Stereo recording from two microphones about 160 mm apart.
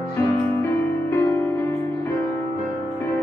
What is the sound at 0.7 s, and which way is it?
Music, 15° left (ahead or behind).